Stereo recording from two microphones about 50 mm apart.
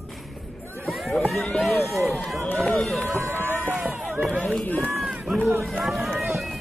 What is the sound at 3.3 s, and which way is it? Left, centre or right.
Run, right.